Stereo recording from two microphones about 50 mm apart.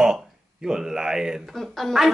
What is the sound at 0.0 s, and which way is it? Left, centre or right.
Speech, centre.